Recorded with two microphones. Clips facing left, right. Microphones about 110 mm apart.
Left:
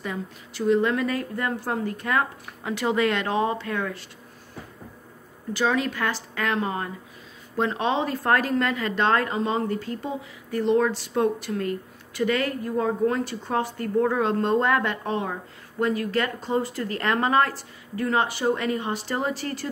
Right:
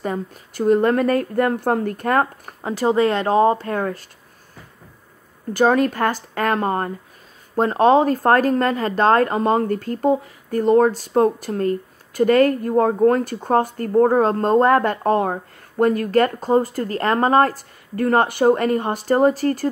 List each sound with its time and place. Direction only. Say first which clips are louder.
0.0 s speech: right 7 dB; 45° right (ahead or behind)
5.5 s speech: right 8 dB; 50° right (ahead or behind)